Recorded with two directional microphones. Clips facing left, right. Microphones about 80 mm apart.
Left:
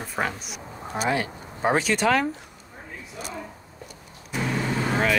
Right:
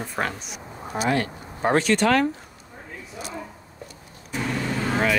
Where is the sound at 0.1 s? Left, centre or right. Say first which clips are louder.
Left 3 dB; centre.